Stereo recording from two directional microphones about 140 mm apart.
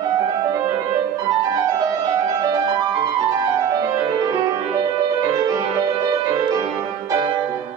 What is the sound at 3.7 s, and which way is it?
Music, 25° right (ahead or behind).